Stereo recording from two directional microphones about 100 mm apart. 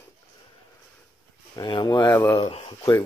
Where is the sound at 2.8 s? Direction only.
30° left (ahead or behind).